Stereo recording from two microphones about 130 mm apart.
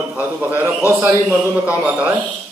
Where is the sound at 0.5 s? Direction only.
15° right (ahead or behind).